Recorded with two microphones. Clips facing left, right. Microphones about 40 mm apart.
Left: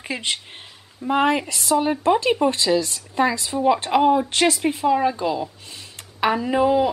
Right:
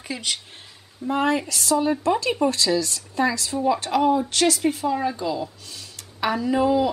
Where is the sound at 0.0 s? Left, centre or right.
Left.